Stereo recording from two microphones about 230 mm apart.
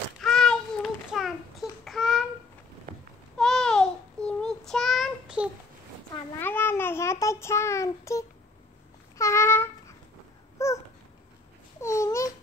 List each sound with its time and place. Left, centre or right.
0.2 s child singing: centre
2.9 s a sound: right
3.3 s child singing: centre
6.4 s child singing: centre
9.2 s a sound: centre
10.6 s babbling: centre
11.8 s babbling: centre